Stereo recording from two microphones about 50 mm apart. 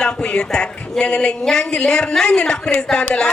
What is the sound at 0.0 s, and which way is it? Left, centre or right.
A man's voice, centre.